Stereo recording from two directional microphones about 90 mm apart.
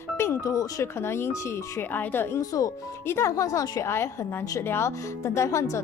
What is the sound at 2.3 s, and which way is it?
Speech, 40° left (ahead or behind).